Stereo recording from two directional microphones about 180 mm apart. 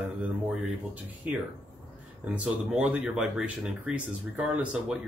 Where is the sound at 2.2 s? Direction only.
5° right (ahead or behind).